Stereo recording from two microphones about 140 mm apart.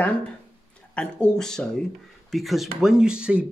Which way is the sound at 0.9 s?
5° left (ahead or behind).